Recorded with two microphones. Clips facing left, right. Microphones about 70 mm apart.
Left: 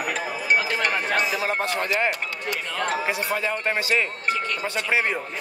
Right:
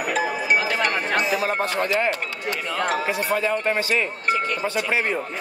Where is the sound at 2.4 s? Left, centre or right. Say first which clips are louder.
Right 3 dB; centre.